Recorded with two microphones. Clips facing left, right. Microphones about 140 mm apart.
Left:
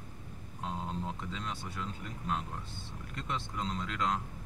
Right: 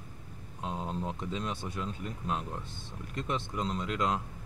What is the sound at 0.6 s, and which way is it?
Speech, 15° right (ahead or behind).